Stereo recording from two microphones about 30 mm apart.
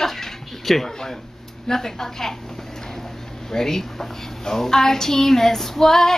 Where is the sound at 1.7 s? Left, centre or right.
Centre.